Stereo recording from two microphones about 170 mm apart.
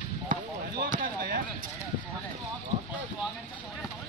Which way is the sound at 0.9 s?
60° right (ahead or behind).